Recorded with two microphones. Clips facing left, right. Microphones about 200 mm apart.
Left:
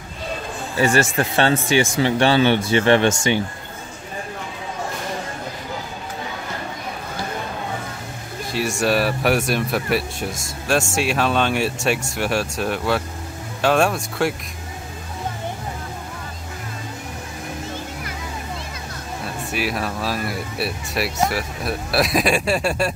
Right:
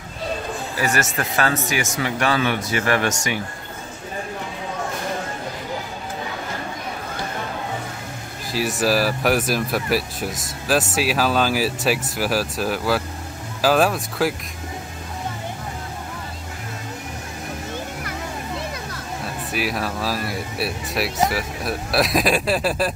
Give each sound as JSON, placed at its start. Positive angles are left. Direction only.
{"t": 0.7, "sound": "speech", "side_deg": 30}
{"t": 8.5, "sound": "speech", "side_deg": 0}
{"t": 19.2, "sound": "speech", "side_deg": 0}